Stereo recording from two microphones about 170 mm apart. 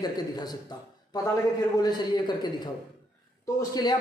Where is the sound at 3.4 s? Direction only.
25° left (ahead or behind).